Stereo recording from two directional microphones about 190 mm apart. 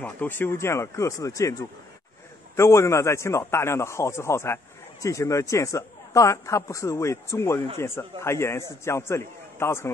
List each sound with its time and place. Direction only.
0.0 s speech: 10° left (ahead or behind)